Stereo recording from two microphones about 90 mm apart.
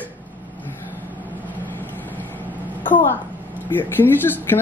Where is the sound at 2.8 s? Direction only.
20° left (ahead or behind).